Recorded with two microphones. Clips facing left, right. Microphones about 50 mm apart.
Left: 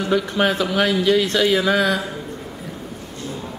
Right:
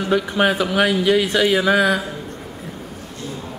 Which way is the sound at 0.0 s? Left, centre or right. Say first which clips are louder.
Right 1 dB; centre.